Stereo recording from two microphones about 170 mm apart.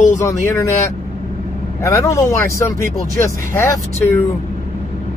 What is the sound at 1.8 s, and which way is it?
Speech, 15° left (ahead or behind).